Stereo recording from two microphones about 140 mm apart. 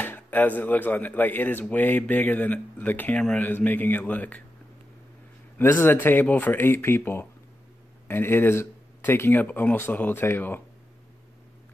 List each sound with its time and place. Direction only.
0.0 s speech: 15° left (ahead or behind)
5.6 s speech: 15° left (ahead or behind)